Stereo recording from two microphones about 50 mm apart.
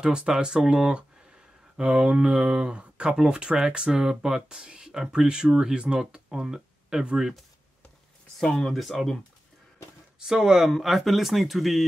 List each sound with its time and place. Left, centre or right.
0.0 s speech: centre
8.4 s speech: centre
8.7 s speech: centre
10.2 s speech: centre